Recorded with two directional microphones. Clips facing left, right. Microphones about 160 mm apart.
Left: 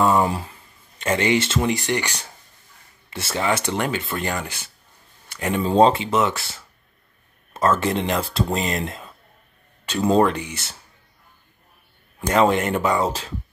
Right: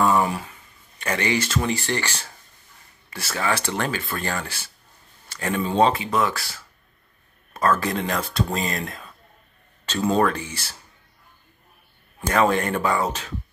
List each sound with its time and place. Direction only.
0.0 s speech: 25° left (ahead or behind)
5.6 s speech: 30° left (ahead or behind)
12.2 s speech: 20° left (ahead or behind)